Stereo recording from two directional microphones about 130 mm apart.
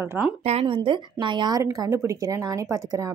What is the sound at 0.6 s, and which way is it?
Speech, 40° right (ahead or behind).